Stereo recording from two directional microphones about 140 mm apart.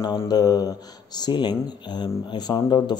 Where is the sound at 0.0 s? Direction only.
30° left (ahead or behind).